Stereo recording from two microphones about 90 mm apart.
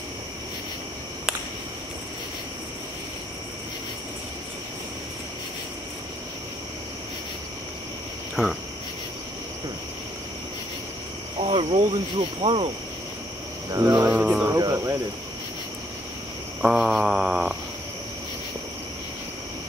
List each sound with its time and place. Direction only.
11.5 s speech: 90° right
13.7 s cricket: 40° right (ahead or behind)
14.0 s cricket: 15° right (ahead or behind)
14.5 s cricket: 35° right (ahead or behind)
16.6 s mantra: 5° right (ahead or behind)